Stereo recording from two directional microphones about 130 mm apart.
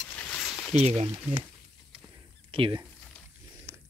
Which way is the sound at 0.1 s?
15° left (ahead or behind).